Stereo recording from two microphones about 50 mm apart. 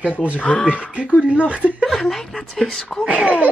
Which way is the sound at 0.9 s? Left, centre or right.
Right.